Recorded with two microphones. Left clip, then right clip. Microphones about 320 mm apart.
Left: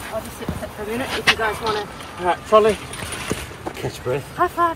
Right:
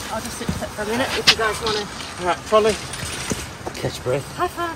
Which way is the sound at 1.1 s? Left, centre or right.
Left.